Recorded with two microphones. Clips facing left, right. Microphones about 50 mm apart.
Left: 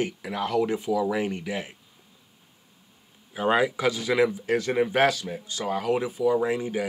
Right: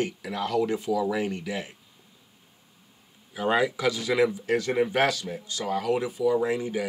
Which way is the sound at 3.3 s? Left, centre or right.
Centre.